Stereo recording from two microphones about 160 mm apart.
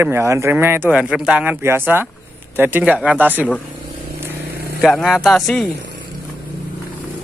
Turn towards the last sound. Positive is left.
turn(degrees=0)  # may be behind; listen again after turning